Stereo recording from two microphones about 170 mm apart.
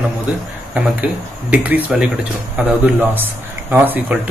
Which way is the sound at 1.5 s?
10° right (ahead or behind).